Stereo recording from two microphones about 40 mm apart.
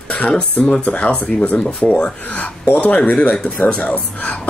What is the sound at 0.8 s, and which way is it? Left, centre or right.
Speech, left.